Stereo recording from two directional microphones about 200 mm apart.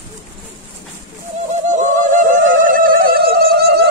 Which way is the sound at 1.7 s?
40° right (ahead or behind).